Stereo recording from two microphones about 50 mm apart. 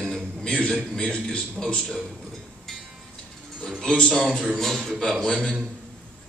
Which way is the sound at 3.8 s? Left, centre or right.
Centre.